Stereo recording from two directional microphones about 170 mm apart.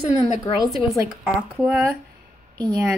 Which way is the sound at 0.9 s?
5° right (ahead or behind).